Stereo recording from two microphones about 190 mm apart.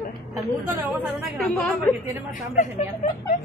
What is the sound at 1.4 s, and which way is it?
Speech, centre (ahead or behind).